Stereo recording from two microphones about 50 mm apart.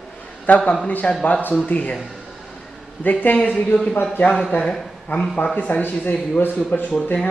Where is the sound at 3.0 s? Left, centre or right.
Left.